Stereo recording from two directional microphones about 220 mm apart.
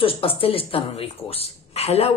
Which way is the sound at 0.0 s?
25° left (ahead or behind).